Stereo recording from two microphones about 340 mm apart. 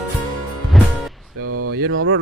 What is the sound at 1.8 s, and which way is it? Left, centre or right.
Mantra, right.